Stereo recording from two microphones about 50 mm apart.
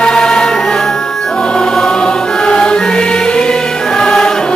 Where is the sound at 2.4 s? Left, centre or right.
Centre.